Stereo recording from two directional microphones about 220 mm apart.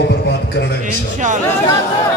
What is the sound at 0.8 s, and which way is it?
Speech, 35° right (ahead or behind).